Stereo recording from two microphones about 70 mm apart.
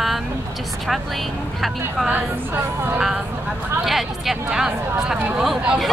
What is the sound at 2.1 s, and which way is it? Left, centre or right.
Speech, right.